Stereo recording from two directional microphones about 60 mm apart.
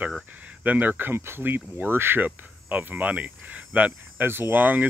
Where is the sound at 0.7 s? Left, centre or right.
Right.